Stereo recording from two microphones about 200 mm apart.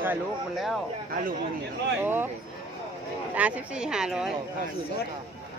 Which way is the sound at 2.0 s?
10° right (ahead or behind).